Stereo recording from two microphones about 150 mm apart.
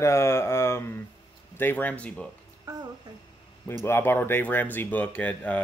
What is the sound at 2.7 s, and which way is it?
Music, 25° right (ahead or behind).